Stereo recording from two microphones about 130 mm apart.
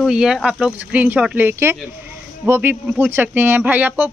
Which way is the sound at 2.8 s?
10° right (ahead or behind).